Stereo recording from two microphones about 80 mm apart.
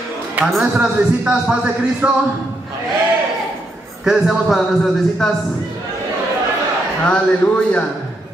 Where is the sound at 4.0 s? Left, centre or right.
Centre.